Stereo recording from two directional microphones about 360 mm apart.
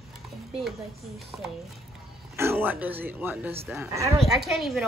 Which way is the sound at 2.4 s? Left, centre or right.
Centre.